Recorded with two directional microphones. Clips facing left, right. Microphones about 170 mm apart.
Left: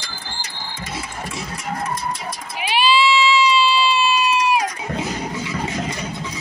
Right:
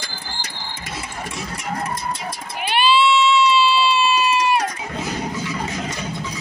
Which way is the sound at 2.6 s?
Centre (ahead or behind).